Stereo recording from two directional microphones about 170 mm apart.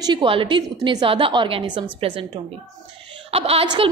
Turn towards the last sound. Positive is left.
turn(degrees=-35)  # may be behind; listen again after turning